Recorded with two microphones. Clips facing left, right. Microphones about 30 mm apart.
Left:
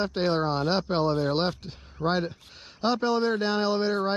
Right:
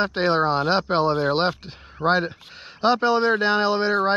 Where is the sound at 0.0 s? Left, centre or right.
Right.